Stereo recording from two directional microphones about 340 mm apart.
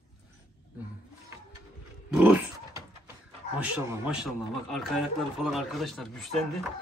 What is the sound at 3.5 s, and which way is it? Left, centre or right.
A man's voice, centre.